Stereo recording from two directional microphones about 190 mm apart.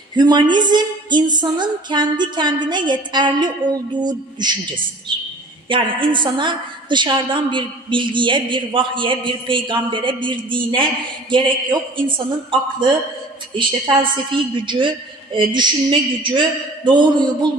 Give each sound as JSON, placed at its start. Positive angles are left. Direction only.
{"t": 0.1, "sound": "a woman's voice", "side_deg": -20}